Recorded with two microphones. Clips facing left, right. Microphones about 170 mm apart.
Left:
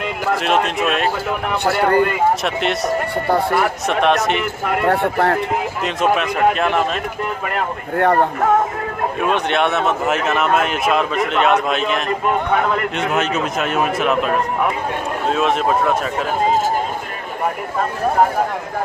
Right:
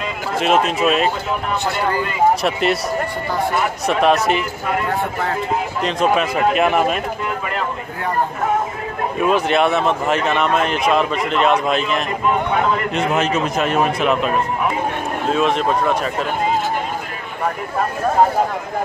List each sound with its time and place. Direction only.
0.4 s speech: centre (ahead or behind)
1.6 s speech: 55° left (ahead or behind)
2.4 s speech: centre (ahead or behind)
3.8 s speech: centre (ahead or behind)
4.4 s speech: 65° left (ahead or behind)
5.8 s speech: centre (ahead or behind)
7.4 s speech: 55° left (ahead or behind)
9.2 s speech: centre (ahead or behind)
12.9 s speech: centre (ahead or behind)